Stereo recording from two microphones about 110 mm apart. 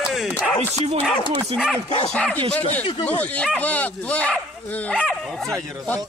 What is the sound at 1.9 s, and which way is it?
Speech, 55° left (ahead or behind).